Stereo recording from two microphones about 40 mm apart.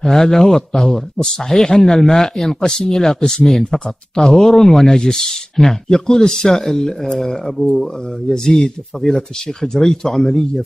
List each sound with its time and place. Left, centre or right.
0.0 s speech: centre
2.6 s speech: centre